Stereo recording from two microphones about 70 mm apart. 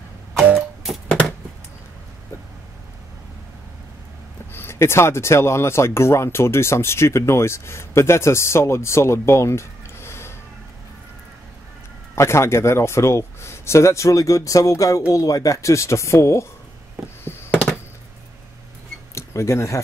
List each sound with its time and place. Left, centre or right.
4.5 s speech: left
12.2 s speech: left
17.2 s a sound: left
19.1 s speech: left